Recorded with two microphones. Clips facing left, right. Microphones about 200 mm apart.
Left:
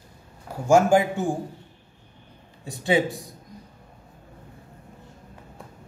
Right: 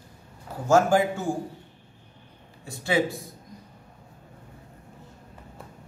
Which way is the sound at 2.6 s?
20° left (ahead or behind).